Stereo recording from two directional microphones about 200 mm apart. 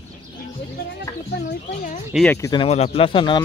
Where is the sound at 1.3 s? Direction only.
60° left (ahead or behind).